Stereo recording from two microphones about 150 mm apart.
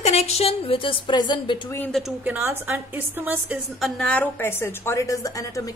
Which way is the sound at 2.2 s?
10° right (ahead or behind).